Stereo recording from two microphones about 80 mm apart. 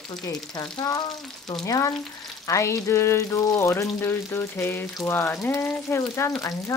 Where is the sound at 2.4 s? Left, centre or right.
Left.